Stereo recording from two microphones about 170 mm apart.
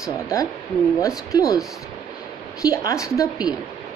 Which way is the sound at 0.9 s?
20° left (ahead or behind).